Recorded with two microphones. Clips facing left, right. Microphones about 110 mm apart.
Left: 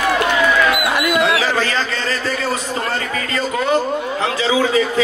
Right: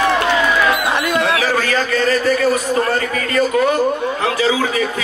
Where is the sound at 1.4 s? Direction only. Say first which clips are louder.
Right 1 dB; 25° left (ahead or behind).